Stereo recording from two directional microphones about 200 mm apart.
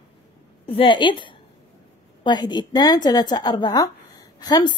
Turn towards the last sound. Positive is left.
turn(degrees=20)  # may be behind; listen again after turning